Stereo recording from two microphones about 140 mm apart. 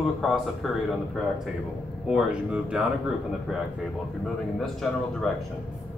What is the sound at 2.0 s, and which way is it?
Speech, 5° right (ahead or behind).